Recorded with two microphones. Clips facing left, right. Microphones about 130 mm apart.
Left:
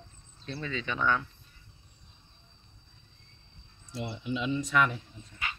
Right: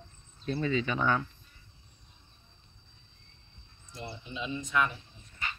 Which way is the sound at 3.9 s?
75° left (ahead or behind).